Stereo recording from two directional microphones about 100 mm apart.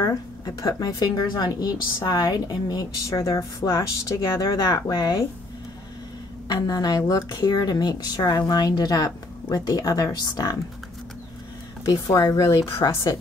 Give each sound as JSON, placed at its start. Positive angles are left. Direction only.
{"t": 0.0, "sound": "a woman's voice", "side_deg": 40}
{"t": 6.5, "sound": "a woman's voice", "side_deg": 40}
{"t": 11.8, "sound": "a woman's voice", "side_deg": 40}